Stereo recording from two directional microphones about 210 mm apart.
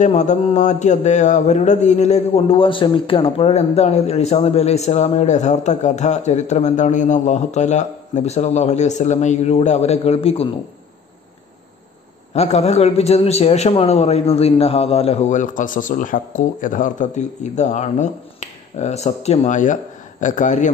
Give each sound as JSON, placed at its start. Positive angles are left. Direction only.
{"t": 0.0, "sound": "mantra", "side_deg": 35}
{"t": 12.4, "sound": "mantra", "side_deg": 30}